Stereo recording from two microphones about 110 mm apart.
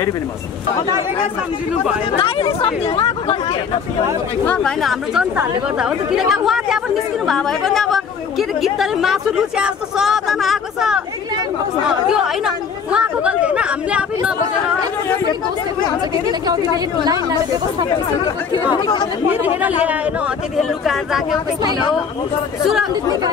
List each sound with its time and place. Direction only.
2.1 s speech: 55° left (ahead or behind)
4.5 s a woman's voice: 5° left (ahead or behind)
5.1 s a woman's voice: 10° right (ahead or behind)
16.3 s a woman's voice: 35° right (ahead or behind)
19.6 s speech: 15° right (ahead or behind)
20.5 s a woman's voice: centre (ahead or behind)